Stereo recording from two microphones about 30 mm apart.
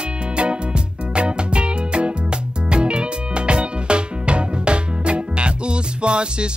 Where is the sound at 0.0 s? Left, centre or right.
Right.